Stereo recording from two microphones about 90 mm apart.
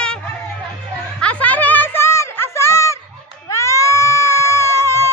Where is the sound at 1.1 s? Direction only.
15° left (ahead or behind); by 3.0 s 35° left (ahead or behind).